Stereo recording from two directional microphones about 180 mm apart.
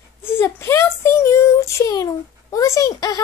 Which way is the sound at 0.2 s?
15° left (ahead or behind).